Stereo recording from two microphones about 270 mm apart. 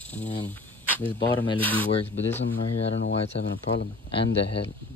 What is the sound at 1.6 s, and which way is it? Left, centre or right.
Speech, centre.